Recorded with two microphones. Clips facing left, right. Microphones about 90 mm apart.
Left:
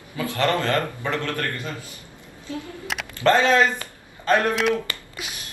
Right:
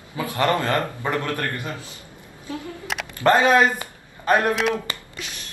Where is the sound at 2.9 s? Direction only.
Centre (ahead or behind).